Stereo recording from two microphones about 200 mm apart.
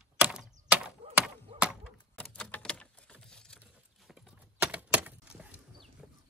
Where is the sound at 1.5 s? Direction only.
35° right (ahead or behind).